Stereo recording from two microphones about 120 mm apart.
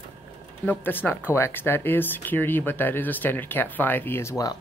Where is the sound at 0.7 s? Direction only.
15° left (ahead or behind).